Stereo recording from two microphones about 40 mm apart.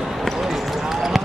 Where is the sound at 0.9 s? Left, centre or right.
Centre.